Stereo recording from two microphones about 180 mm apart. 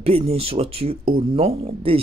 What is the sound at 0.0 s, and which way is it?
Speech, 35° right (ahead or behind).